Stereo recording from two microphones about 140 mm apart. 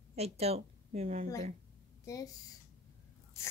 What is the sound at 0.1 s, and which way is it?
A woman's voice, 50° right (ahead or behind).